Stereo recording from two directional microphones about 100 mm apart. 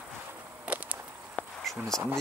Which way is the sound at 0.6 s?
15° right (ahead or behind).